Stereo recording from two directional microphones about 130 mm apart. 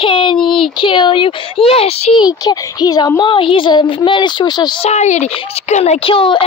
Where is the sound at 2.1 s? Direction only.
30° left (ahead or behind).